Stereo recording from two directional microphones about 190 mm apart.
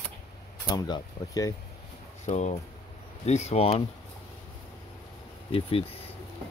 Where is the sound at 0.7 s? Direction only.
20° left (ahead or behind).